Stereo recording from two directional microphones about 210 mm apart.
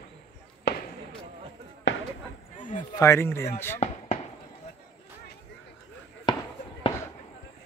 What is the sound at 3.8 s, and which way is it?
Fireworks, 30° left (ahead or behind).